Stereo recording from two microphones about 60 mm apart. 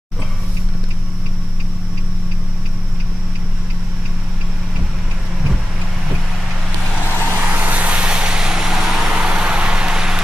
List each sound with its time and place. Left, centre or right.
7.3 s vehicle: right; by 9.1 s centre
9.2 s vehicle: centre